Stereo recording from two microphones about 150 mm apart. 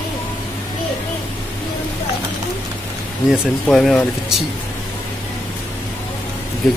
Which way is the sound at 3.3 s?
Centre (ahead or behind).